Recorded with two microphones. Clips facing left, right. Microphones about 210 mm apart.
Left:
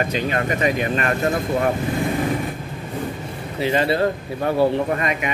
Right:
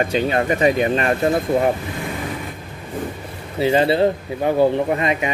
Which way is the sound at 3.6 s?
30° right (ahead or behind).